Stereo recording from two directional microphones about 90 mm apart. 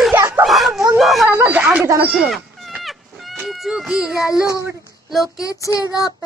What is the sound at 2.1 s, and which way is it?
Dog, centre (ahead or behind).